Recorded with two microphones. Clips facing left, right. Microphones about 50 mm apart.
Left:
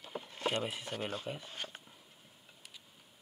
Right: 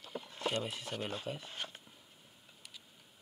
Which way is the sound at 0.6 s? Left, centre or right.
Centre.